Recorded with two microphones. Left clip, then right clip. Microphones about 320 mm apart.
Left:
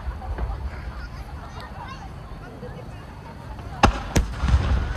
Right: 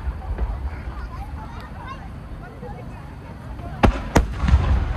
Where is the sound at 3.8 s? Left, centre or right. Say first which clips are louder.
Left 1 dB; centre.